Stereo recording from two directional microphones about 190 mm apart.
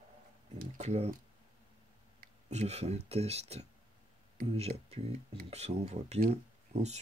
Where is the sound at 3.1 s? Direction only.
35° right (ahead or behind).